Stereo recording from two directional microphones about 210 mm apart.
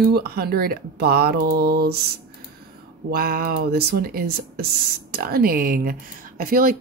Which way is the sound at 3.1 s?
45° right (ahead or behind).